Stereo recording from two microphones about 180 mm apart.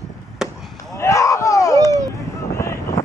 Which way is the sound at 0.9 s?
15° left (ahead or behind).